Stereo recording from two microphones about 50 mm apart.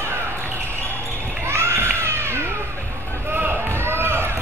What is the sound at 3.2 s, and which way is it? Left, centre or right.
Basketball bounce, right.